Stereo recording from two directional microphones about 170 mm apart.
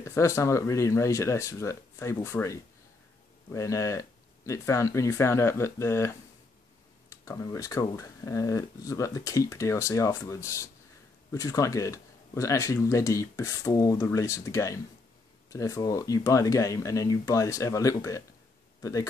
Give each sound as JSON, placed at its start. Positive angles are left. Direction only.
{"t": 0.0, "sound": "speech", "side_deg": 15}